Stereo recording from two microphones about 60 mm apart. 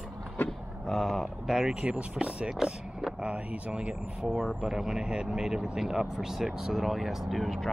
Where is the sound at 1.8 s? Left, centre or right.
Centre.